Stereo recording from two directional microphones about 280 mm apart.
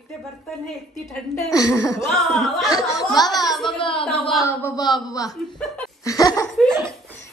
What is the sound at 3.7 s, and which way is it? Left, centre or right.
A child's voice, centre.